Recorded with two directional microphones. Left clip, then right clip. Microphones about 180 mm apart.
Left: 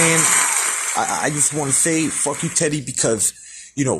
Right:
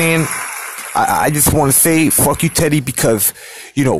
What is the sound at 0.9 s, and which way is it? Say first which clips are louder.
Speech: right 9 dB; 35° right (ahead or behind).